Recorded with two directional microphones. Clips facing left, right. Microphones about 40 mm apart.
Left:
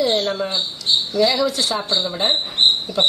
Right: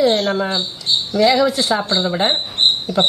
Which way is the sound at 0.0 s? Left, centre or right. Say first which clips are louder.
Right 4 dB; centre.